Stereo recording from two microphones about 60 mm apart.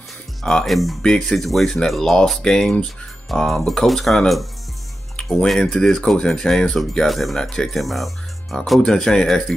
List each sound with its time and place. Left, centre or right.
0.4 s speech: centre
1.0 s speech: centre
5.6 s speech: centre